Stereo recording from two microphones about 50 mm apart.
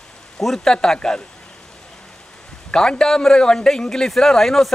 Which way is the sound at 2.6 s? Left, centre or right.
Centre.